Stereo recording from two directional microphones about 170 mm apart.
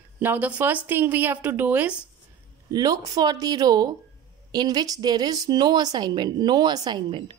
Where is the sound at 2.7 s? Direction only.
20° right (ahead or behind).